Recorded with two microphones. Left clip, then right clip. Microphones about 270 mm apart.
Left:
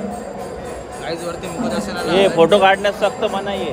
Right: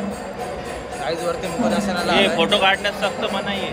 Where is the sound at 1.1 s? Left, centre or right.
Centre.